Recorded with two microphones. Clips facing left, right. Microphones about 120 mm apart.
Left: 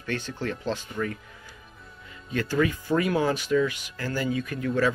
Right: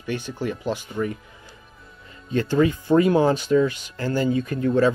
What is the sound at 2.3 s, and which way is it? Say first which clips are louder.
Speech: right 5 dB; 25° right (ahead or behind).